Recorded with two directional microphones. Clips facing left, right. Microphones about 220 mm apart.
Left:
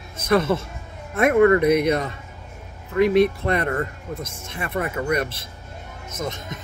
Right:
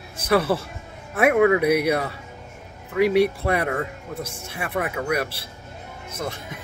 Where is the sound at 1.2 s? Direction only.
5° right (ahead or behind).